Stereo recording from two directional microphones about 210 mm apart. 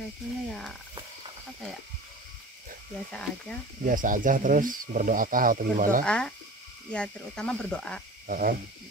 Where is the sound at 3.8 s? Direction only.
40° right (ahead or behind).